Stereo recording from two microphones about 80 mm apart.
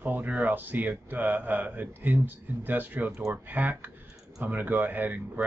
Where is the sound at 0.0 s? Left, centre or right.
Right.